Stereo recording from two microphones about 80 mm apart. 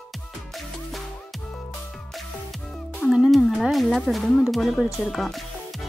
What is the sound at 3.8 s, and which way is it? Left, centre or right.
Speech, centre.